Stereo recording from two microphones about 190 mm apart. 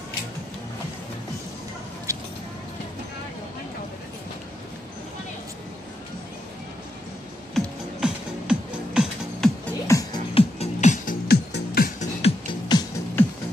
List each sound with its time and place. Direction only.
2.1 s vehicle: 15° right (ahead or behind)
7.5 s music: 5° right (ahead or behind)
9.7 s music: 15° left (ahead or behind)
10.3 s music: 35° left (ahead or behind)
11.2 s music: 55° left (ahead or behind)
12.2 s music: 25° left (ahead or behind)